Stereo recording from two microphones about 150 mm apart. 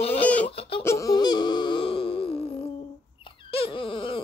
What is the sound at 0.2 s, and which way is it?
Fowl, 10° left (ahead or behind).